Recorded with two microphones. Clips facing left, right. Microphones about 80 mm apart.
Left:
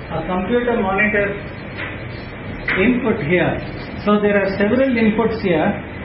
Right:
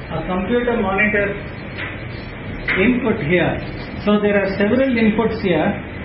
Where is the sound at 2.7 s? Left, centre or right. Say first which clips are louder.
Even; centre.